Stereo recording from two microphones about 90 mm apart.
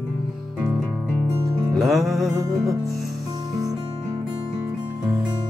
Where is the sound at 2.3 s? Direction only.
40° right (ahead or behind).